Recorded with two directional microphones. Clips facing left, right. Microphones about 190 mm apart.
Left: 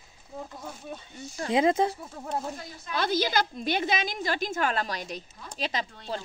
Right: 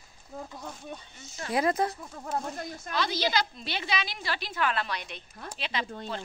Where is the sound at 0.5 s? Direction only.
5° left (ahead or behind).